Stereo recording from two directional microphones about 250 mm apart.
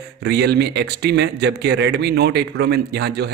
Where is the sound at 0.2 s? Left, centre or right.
Right.